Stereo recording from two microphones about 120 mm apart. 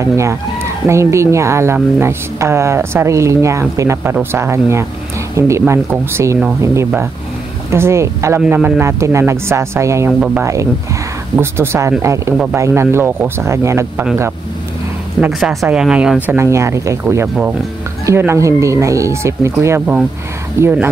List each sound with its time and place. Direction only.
0.0 s speech: 25° right (ahead or behind)
8.4 s speech: 10° right (ahead or behind)
15.1 s speech: 5° right (ahead or behind)
16.3 s speech: 25° right (ahead or behind)
18.0 s speech: 20° right (ahead or behind)